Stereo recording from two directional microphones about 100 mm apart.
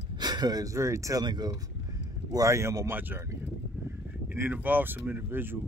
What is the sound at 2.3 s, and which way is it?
Speech, 35° right (ahead or behind).